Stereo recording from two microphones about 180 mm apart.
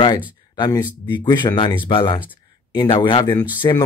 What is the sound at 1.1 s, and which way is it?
Speech, 25° left (ahead or behind).